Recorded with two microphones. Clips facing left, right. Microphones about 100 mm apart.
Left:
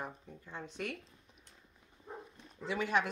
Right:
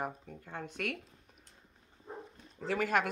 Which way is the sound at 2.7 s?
50° right (ahead or behind).